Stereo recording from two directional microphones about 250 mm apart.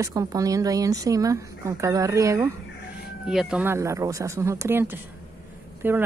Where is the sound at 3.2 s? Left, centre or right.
Centre.